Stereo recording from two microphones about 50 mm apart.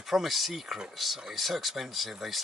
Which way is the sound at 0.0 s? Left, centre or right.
Centre.